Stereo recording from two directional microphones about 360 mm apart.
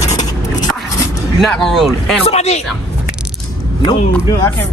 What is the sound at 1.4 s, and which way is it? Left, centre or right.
Speech, centre.